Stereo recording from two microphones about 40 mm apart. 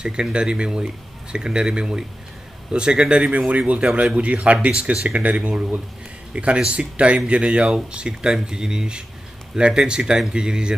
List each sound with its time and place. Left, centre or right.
0.0 s speech: right
3.3 s speech: right